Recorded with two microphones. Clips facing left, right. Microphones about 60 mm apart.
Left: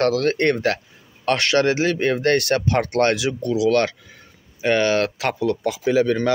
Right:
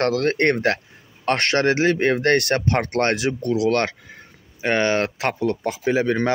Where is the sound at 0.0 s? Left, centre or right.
Right.